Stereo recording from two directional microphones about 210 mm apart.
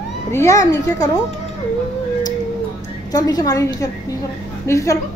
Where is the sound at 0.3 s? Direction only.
15° left (ahead or behind).